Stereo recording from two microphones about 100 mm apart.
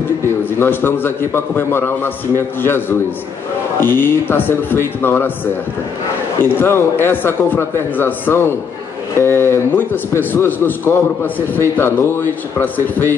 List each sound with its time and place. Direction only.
0.6 s a man's voice: 20° left (ahead or behind)
6.5 s a man's voice: 20° left (ahead or behind)